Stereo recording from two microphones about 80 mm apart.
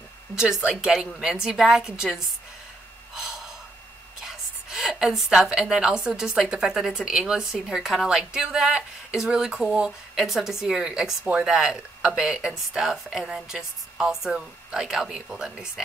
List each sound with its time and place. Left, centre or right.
0.3 s a sound: left
0.7 s a woman's voice: centre
3.2 s gasp: centre
4.2 s a woman's voice: centre
10.1 s a woman's voice: centre